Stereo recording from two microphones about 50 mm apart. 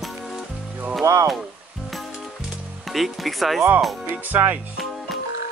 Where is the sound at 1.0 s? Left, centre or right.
Right.